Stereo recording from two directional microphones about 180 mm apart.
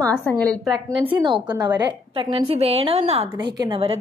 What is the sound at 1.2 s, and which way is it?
A woman's voice, 25° right (ahead or behind).